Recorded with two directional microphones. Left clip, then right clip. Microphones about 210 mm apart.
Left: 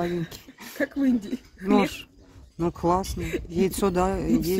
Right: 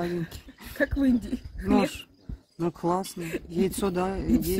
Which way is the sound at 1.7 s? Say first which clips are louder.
Left 2 dB; 10° left (ahead or behind).